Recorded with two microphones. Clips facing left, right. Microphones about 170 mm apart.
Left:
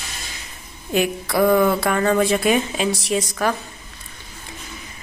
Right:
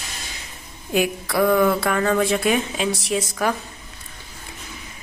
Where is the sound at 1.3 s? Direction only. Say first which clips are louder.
Left 1 dB; 5° left (ahead or behind).